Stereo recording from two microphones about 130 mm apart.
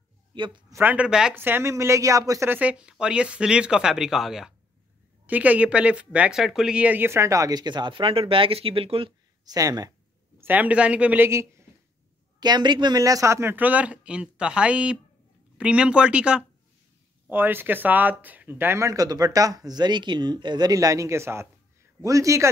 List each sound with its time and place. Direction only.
0.7 s speech: 10° right (ahead or behind); by 9.1 s 45° right (ahead or behind)
9.4 s speech: 30° right (ahead or behind)
10.4 s speech: 10° right (ahead or behind)
12.4 s speech: 35° right (ahead or behind)